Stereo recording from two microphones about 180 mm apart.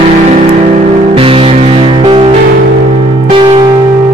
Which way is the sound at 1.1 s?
30° right (ahead or behind).